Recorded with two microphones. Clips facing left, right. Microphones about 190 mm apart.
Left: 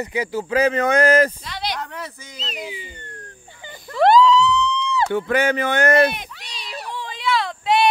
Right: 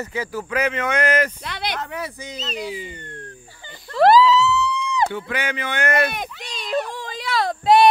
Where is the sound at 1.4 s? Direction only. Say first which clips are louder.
Even; 55° right (ahead or behind).